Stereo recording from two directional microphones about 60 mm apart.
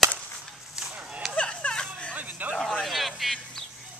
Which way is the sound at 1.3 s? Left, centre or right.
Centre.